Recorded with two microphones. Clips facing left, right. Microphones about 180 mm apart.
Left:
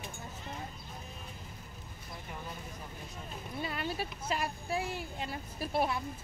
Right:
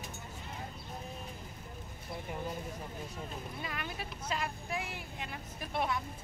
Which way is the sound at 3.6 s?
30° left (ahead or behind).